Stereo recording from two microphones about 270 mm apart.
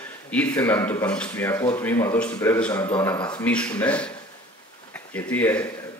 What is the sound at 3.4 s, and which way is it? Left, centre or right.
Speech, centre.